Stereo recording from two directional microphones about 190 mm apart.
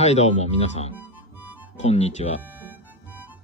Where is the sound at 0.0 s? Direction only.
35° left (ahead or behind).